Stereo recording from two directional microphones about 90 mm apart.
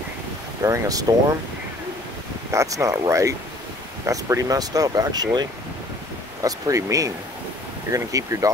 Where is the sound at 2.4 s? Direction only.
35° right (ahead or behind).